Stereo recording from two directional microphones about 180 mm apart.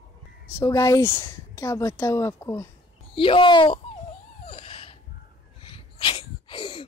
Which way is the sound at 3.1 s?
30° left (ahead or behind).